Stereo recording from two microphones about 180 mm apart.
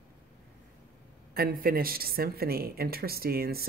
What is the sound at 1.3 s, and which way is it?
Speech, 55° right (ahead or behind).